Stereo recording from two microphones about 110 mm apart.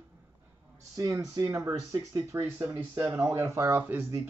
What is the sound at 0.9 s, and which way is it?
Speech, 30° right (ahead or behind).